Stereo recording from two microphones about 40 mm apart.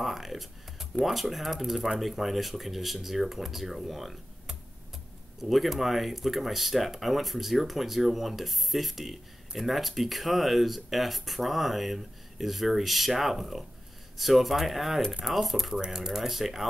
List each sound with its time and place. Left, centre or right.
0.0 s music: centre
1.0 s speech: centre
15.7 s speech: centre
16.1 s speech: centre